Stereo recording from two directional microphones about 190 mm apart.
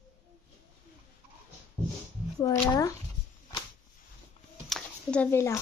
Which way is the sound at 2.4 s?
20° left (ahead or behind).